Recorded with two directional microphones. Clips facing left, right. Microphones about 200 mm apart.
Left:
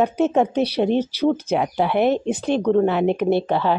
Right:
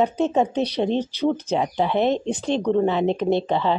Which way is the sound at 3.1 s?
10° left (ahead or behind).